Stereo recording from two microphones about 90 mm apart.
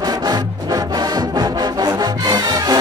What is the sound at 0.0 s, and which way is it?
Music, 45° right (ahead or behind).